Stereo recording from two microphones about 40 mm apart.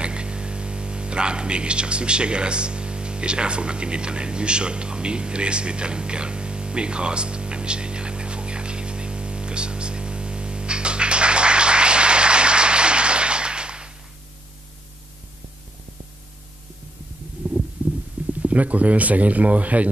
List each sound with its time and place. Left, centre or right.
0.0 s whispering: right
18.4 s speech: right